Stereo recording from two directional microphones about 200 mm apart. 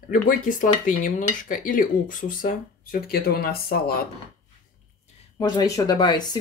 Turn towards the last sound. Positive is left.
turn(degrees=20)  # may be behind; listen again after turning